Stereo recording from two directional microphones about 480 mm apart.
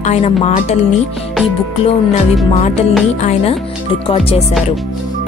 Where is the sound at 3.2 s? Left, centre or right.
Centre.